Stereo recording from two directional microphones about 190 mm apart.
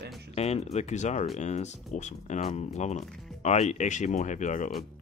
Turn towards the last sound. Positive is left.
turn(degrees=40)  # may be behind; listen again after turning